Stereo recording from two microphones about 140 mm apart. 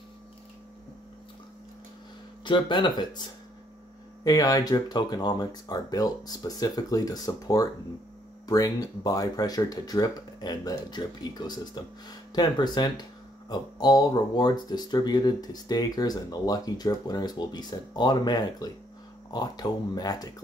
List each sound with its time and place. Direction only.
2.4 s speech: 35° left (ahead or behind)